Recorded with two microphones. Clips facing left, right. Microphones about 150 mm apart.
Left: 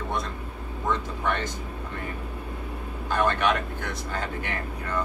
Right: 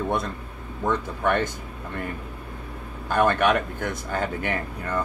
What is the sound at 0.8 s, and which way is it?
Speech, 55° right (ahead or behind).